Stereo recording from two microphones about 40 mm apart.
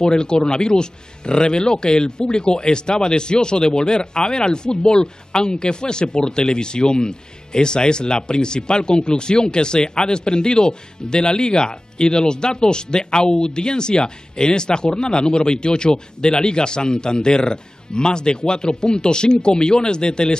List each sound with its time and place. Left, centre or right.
0.0 s speech: left